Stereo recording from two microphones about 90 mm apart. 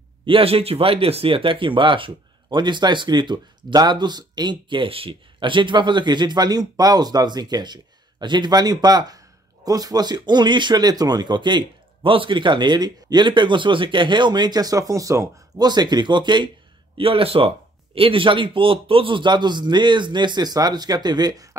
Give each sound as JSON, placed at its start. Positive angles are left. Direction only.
{"t": 0.2, "sound": "speech", "side_deg": -85}
{"t": 16.9, "sound": "speech", "side_deg": -90}